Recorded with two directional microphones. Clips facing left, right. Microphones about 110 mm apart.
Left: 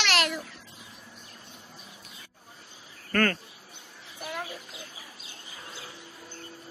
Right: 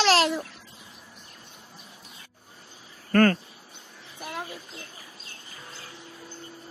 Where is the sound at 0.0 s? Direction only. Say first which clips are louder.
Right 6 dB; 30° right (ahead or behind).